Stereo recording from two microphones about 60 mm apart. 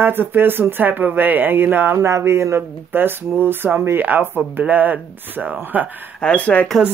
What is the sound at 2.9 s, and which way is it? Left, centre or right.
Speech, right.